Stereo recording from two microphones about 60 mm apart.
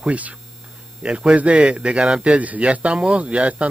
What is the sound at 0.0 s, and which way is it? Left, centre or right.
Hum, right.